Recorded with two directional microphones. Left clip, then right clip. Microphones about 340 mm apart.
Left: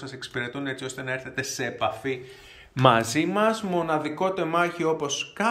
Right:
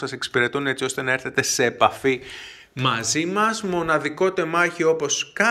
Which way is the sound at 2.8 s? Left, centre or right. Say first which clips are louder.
Left 2 dB; centre.